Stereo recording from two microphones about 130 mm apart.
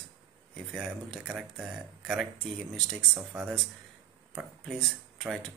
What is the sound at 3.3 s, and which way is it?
Speech, 15° right (ahead or behind).